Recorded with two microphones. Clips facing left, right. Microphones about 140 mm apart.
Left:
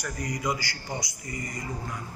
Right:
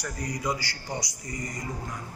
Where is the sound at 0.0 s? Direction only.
35° right (ahead or behind).